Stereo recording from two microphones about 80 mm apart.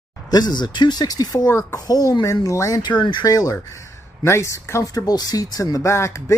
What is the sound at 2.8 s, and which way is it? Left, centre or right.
Speech, left.